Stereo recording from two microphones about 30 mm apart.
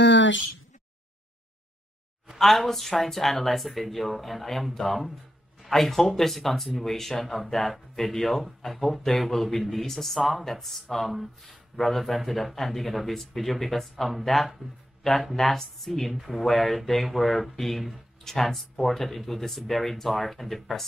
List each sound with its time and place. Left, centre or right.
2.3 s speech: centre
16.1 s speech: centre
18.2 s speech: centre